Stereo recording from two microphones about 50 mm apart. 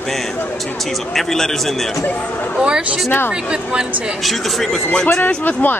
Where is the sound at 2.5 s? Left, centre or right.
Centre.